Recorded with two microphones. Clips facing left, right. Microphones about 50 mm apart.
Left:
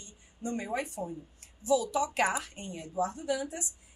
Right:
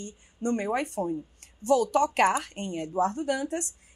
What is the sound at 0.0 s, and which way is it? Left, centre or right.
A woman's voice, right.